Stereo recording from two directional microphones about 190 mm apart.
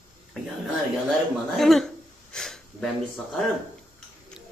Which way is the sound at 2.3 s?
5° left (ahead or behind).